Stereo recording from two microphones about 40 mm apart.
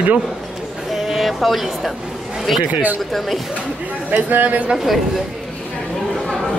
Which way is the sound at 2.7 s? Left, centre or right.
Right.